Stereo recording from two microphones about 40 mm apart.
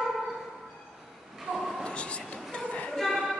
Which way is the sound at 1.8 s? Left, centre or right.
Left.